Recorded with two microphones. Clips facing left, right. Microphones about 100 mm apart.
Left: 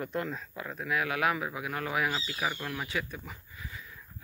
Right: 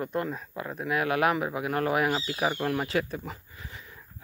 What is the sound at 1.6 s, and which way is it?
Speech, 45° right (ahead or behind).